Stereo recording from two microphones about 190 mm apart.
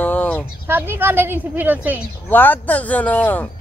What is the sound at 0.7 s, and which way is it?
A woman's voice, 10° right (ahead or behind).